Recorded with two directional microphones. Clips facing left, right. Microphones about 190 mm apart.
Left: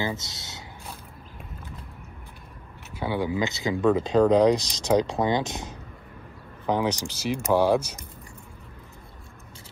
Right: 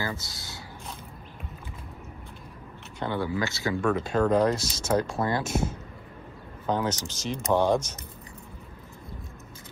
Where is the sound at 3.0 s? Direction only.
15° left (ahead or behind).